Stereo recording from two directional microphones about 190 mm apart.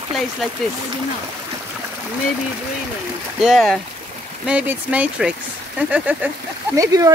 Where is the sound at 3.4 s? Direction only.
Centre (ahead or behind).